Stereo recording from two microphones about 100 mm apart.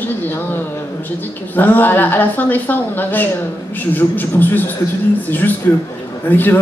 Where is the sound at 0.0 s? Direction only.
20° left (ahead or behind).